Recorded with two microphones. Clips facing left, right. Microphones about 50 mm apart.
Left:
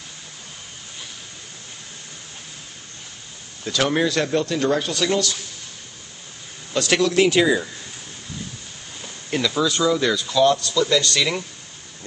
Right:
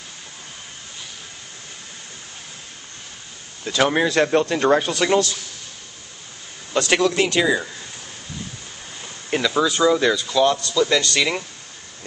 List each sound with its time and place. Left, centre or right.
3.6 s speech: centre
6.7 s speech: centre
9.3 s speech: right